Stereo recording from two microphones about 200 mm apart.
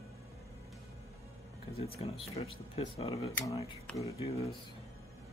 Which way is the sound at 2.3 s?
30° left (ahead or behind).